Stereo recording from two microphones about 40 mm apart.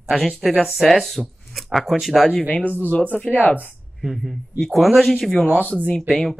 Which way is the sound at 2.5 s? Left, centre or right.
Left.